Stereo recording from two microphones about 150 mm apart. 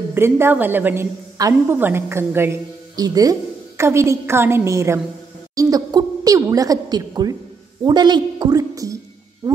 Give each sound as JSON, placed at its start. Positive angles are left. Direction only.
{"t": 0.1, "sound": "a woman's voice", "side_deg": -15}